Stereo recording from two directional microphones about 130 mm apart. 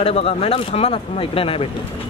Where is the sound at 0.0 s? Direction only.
50° left (ahead or behind).